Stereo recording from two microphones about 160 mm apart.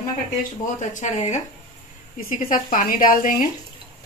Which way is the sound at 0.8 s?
45° left (ahead or behind).